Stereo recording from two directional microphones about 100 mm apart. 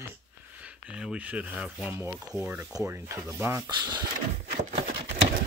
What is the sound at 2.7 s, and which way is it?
Speech, 30° right (ahead or behind).